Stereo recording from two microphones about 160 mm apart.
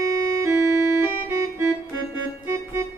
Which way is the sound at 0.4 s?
15° right (ahead or behind).